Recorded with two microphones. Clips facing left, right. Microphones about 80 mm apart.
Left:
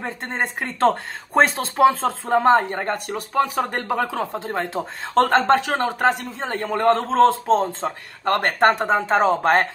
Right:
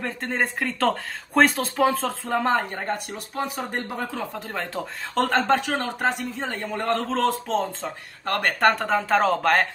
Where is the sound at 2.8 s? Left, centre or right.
Left.